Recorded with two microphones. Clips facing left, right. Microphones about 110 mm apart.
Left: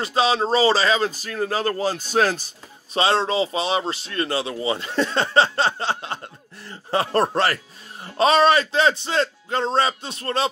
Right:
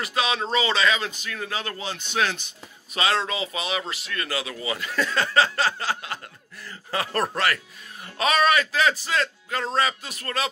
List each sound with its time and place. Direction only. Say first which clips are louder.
0.0 s speech: left 6 dB; 30° left (ahead or behind)